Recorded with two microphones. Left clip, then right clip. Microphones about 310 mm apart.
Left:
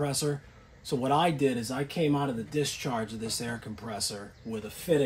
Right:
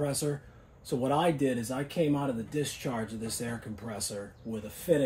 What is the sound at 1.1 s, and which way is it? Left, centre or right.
Speech, left.